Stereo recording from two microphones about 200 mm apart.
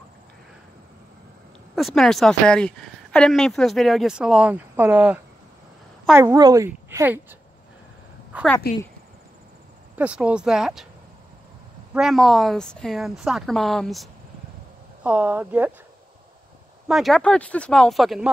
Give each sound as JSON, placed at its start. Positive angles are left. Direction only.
{"t": 1.8, "sound": "a woman's voice", "side_deg": 0}
{"t": 9.9, "sound": "speech", "side_deg": -5}
{"t": 11.9, "sound": "speech", "side_deg": 0}
{"t": 15.0, "sound": "a woman's voice", "side_deg": -5}
{"t": 16.8, "sound": "speech", "side_deg": 0}